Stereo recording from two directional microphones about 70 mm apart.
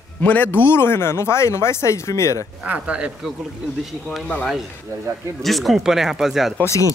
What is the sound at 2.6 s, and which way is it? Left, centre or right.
Speech, centre.